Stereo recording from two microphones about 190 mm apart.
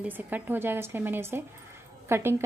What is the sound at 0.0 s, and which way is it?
A woman's voice, 10° right (ahead or behind).